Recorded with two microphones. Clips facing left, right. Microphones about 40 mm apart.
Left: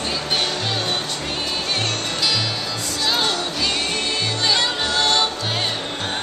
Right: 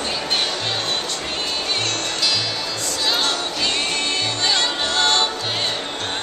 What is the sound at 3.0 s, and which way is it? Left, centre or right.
Music, centre.